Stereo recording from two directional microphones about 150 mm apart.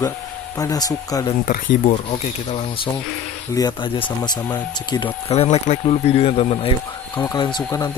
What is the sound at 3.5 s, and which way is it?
Speech, 30° left (ahead or behind).